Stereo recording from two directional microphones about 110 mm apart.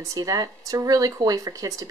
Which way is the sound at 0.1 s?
35° right (ahead or behind).